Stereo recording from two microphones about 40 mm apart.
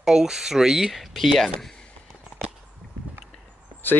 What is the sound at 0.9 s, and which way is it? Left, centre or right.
Speech, centre.